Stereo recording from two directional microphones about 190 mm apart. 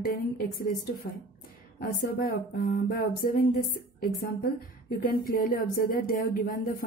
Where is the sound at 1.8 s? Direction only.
50° left (ahead or behind).